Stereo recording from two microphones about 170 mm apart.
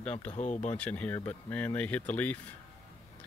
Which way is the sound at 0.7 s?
10° left (ahead or behind).